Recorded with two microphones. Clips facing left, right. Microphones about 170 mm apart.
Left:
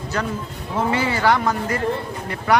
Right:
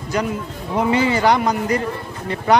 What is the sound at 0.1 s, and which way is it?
A man's voice, 15° right (ahead or behind).